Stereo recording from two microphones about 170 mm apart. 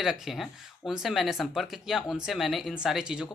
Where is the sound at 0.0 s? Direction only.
Centre (ahead or behind).